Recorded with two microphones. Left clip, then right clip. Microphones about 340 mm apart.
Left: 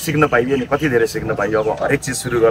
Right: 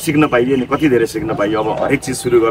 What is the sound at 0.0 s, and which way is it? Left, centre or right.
A man's voice, centre.